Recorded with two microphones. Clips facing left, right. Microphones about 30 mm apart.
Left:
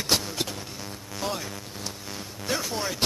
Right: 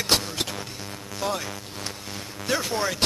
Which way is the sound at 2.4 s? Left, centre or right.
Centre.